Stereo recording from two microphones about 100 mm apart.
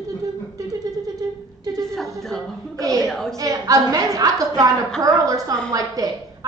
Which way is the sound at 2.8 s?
35° right (ahead or behind).